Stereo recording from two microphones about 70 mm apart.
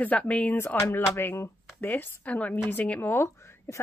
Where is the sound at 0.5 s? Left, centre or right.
Left.